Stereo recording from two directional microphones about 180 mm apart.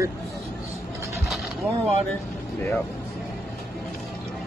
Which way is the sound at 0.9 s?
15° right (ahead or behind).